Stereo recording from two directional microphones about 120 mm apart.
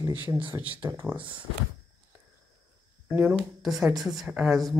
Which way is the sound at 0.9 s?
20° right (ahead or behind).